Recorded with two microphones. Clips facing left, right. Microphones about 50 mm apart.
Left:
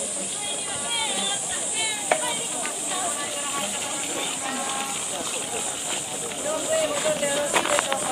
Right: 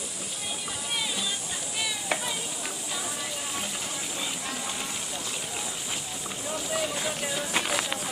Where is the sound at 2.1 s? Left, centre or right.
Left.